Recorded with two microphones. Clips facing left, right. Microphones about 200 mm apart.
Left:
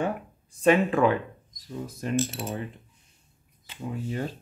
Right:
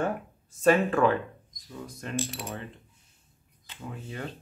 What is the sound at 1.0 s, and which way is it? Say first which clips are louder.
Speech: left 1 dB; 10° left (ahead or behind).